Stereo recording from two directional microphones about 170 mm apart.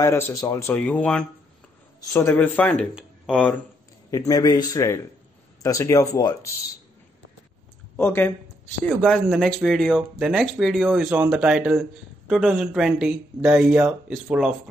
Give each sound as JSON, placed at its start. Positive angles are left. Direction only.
{"t": 0.0, "sound": "speech", "side_deg": 20}
{"t": 4.3, "sound": "speech", "side_deg": 25}
{"t": 7.9, "sound": "speech", "side_deg": 10}